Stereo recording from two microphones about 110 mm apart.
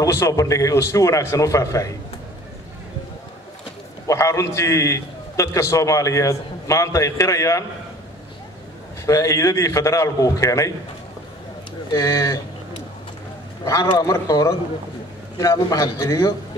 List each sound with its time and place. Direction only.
0.0 s a man's voice: 30° left (ahead or behind)
4.1 s a man's voice: 25° left (ahead or behind)
9.0 s a man's voice: 30° left (ahead or behind)
11.9 s speech: 30° left (ahead or behind)
13.7 s a man's voice: 30° left (ahead or behind)